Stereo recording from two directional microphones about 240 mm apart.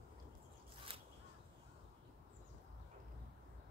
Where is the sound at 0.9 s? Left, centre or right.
Right.